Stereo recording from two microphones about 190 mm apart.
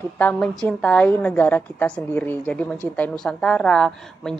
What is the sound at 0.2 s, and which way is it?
A woman's voice, 5° left (ahead or behind).